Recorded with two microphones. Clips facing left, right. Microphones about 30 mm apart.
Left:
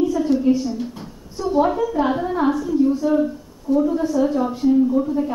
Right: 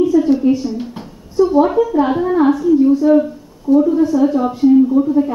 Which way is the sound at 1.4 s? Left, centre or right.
Centre.